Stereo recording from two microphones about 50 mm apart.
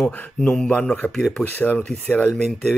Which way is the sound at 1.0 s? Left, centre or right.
Left.